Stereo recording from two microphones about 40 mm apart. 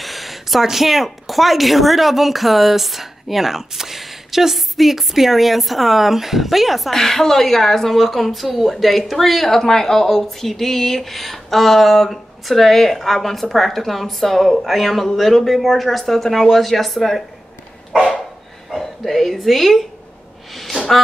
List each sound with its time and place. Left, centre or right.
0.0 s a woman's voice: centre
6.9 s speech: centre
17.9 s dog: left
18.7 s a woman's voice: centre
20.5 s gasp: centre